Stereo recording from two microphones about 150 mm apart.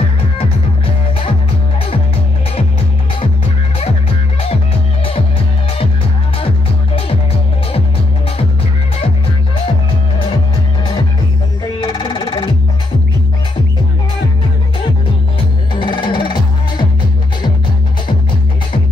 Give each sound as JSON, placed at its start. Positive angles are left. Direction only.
{"t": 11.6, "sound": "music", "side_deg": 30}
{"t": 15.7, "sound": "music", "side_deg": 30}